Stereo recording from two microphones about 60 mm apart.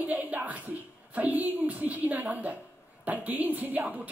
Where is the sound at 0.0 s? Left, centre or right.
Right.